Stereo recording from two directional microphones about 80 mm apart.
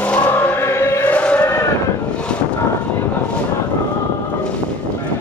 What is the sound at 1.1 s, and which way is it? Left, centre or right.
Chant, centre.